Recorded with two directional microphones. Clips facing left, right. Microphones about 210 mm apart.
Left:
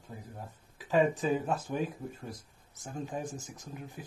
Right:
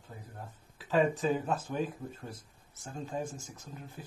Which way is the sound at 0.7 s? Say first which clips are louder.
Left 1 dB; 15° left (ahead or behind).